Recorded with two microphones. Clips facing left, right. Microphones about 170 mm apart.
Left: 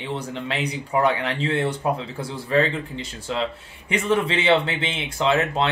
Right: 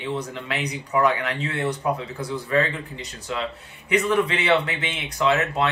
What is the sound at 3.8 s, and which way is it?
Speech, 30° left (ahead or behind).